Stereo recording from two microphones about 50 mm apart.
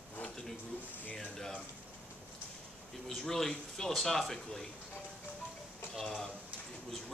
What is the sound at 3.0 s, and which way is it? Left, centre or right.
Speech, centre.